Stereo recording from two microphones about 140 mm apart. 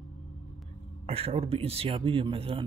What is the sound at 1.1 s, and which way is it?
Speech, 45° right (ahead or behind).